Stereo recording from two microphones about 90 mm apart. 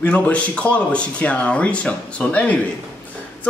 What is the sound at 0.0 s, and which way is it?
Speech, 15° left (ahead or behind).